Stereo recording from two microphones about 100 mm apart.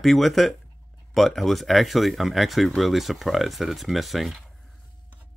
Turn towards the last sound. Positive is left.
turn(degrees=0)  # may be behind; listen again after turning